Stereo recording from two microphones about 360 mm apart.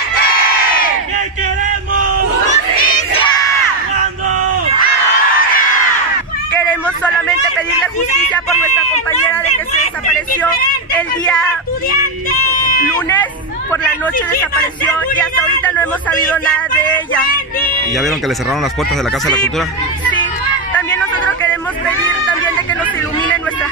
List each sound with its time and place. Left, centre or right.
2.5 s crowd: centre
7.5 s a sound: centre
11.0 s speech: centre
15.1 s speech: centre
19.2 s speech: centre
20.7 s a sound: centre